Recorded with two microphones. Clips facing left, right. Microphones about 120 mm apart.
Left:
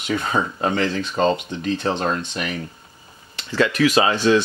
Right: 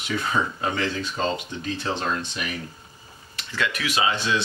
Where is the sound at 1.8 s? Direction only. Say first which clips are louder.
Left 2 dB; 45° left (ahead or behind).